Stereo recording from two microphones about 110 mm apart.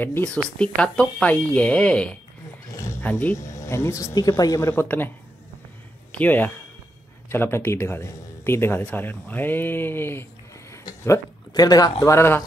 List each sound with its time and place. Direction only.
0.0 s speech: 15° left (ahead or behind)
2.7 s roaring cats: 30° left (ahead or behind)
3.0 s speech: 15° left (ahead or behind)
3.3 s a man's voice: 30° left (ahead or behind)
4.6 s speech: 20° left (ahead or behind)
6.1 s a man's voice: 15° left (ahead or behind)
10.7 s a sound: 30° left (ahead or behind)
12.0 s a man's voice: 25° left (ahead or behind)